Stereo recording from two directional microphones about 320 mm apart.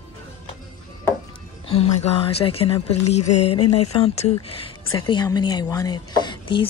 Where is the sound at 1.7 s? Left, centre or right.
Centre.